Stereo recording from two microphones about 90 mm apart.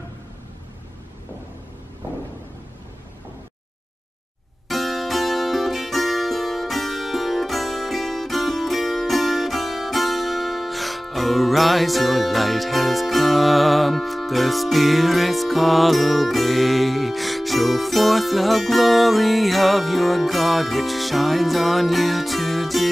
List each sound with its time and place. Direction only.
4.6 s music: centre (ahead or behind)